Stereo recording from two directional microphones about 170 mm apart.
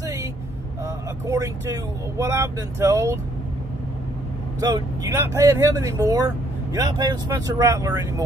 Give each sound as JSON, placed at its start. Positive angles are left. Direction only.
{"t": 0.0, "sound": "vehicle", "side_deg": -15}
{"t": 0.8, "sound": "speech", "side_deg": -20}
{"t": 4.6, "sound": "speech", "side_deg": -25}